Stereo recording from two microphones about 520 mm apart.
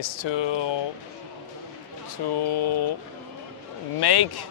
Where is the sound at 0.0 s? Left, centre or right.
Left.